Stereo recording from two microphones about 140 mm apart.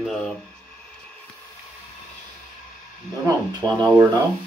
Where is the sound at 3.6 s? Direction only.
5° left (ahead or behind).